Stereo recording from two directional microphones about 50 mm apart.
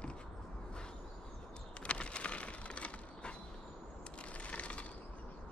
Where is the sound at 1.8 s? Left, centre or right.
Left.